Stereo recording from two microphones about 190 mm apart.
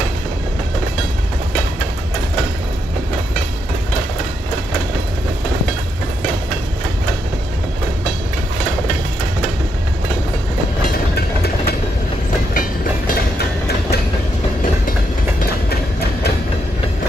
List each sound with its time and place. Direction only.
11.1 s vehicle: 55° left (ahead or behind)
12.5 s train: 45° left (ahead or behind)